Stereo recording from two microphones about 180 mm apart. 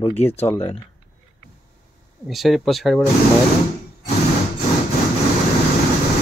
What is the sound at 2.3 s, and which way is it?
Speech, centre (ahead or behind).